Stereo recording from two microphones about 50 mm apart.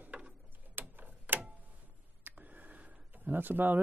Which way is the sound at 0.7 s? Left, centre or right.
Right.